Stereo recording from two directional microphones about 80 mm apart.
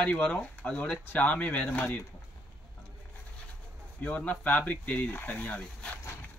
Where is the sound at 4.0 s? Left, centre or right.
Centre.